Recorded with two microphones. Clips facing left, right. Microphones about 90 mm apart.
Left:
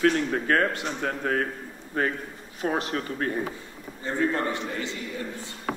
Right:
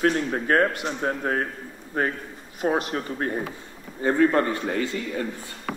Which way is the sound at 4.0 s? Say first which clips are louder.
Right 6 dB; 55° right (ahead or behind).